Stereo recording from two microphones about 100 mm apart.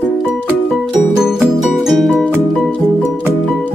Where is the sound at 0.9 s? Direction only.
5° right (ahead or behind).